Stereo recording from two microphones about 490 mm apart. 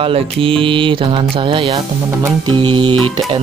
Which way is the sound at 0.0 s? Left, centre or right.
Centre.